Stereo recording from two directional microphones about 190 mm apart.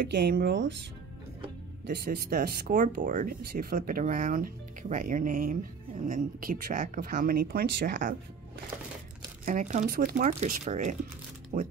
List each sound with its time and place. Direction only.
0.1 s speech: 55° right (ahead or behind)
1.9 s speech: 50° right (ahead or behind)
9.4 s speech: 45° right (ahead or behind)